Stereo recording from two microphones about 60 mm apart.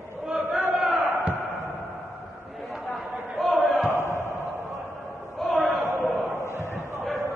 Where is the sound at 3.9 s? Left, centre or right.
Left.